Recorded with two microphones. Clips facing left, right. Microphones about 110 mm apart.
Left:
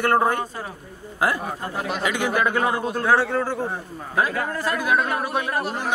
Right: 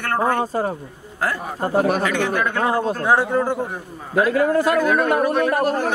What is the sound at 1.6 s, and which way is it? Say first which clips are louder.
Speech: right 9 dB; 45° right (ahead or behind).